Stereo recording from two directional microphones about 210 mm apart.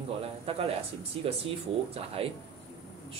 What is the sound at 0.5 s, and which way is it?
Speech, 25° right (ahead or behind).